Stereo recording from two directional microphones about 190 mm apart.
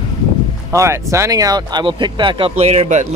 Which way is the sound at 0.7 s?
15° right (ahead or behind).